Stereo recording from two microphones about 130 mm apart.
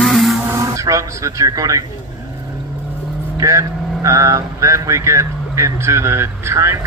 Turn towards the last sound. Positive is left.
turn(degrees=-20)  # may be behind; listen again after turning